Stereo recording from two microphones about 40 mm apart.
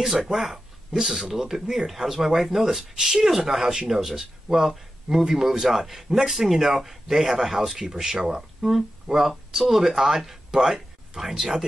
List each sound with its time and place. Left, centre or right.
0.3 s speech: centre
3.6 s speech: centre
3.9 s speech: centre